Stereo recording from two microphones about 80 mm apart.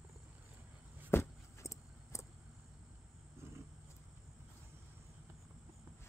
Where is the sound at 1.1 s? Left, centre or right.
Left.